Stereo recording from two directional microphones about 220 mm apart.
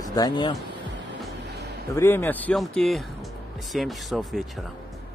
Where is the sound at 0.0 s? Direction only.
15° left (ahead or behind).